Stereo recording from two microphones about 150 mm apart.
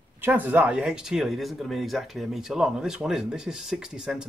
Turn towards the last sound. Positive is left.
turn(degrees=-5)  # may be behind; listen again after turning